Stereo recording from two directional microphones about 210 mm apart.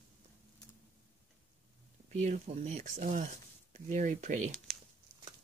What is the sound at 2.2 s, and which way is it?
Speech, 35° right (ahead or behind).